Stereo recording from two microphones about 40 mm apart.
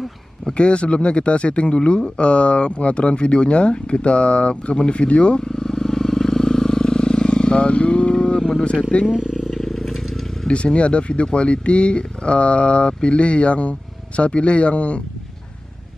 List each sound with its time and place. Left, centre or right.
0.5 s a man's voice: left
9.5 s vehicle: centre
10.5 s a man's voice: left